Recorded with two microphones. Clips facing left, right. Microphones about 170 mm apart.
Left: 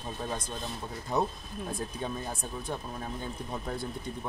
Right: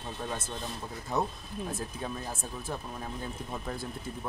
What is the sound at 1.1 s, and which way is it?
Speech, centre (ahead or behind).